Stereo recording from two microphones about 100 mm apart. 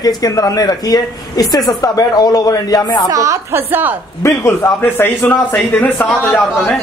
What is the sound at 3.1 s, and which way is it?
Speech, 35° right (ahead or behind).